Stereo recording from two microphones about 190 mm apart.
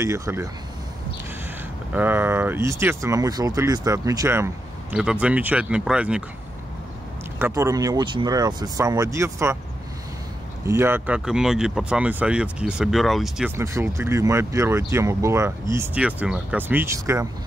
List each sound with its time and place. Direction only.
0.0 s speech: 15° right (ahead or behind)
2.0 s speech: 10° right (ahead or behind)
4.9 s speech: 5° right (ahead or behind)
7.3 s speech: 15° right (ahead or behind)
10.6 s speech: 15° right (ahead or behind)
13.6 s speech: 15° right (ahead or behind)